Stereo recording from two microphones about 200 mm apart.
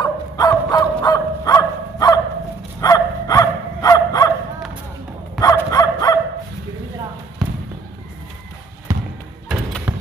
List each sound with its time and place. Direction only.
0.0 s dog: 20° left (ahead or behind)
5.4 s bow-wow: 20° left (ahead or behind)
7.4 s basketball bounce: centre (ahead or behind)
8.9 s bouncing: 15° right (ahead or behind)
9.5 s thump: centre (ahead or behind)